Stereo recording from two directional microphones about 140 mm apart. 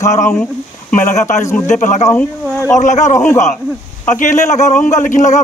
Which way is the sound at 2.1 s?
20° left (ahead or behind).